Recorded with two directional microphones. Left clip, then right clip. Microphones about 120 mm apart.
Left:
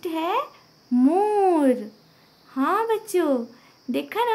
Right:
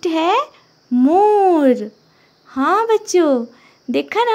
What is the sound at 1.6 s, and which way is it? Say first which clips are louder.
Speech: right 6 dB; 45° right (ahead or behind).